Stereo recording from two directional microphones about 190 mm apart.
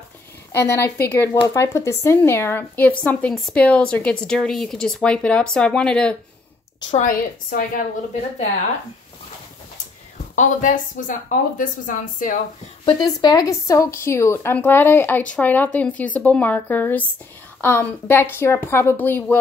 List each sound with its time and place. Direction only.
0.5 s a woman's voice: 10° left (ahead or behind)
6.9 s speech: 45° left (ahead or behind)
10.3 s speech: 40° left (ahead or behind)
13.2 s speech: 20° left (ahead or behind)